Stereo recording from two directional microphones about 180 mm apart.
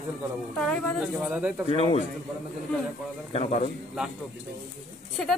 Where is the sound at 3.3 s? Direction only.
35° left (ahead or behind).